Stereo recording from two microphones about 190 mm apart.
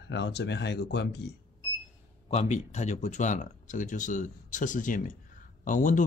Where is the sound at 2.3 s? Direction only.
35° left (ahead or behind).